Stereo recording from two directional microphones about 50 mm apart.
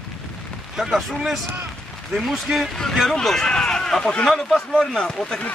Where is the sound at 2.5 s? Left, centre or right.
Centre.